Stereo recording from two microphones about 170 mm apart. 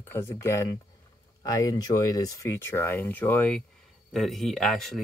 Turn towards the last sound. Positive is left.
turn(degrees=0)  # may be behind; listen again after turning